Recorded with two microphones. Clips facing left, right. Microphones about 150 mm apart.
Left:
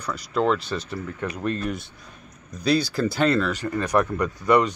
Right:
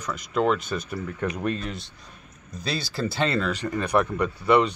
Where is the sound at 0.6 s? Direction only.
30° left (ahead or behind).